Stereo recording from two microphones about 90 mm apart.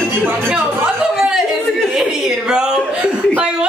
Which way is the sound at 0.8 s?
5° right (ahead or behind).